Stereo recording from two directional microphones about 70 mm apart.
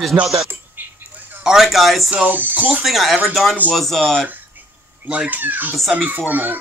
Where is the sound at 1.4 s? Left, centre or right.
Centre.